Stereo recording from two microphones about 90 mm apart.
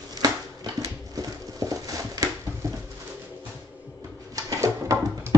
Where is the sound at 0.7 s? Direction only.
40° right (ahead or behind).